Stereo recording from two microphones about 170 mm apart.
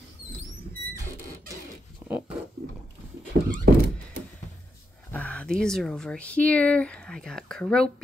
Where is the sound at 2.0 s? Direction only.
15° right (ahead or behind).